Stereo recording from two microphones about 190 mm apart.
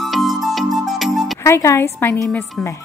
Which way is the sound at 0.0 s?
Centre (ahead or behind).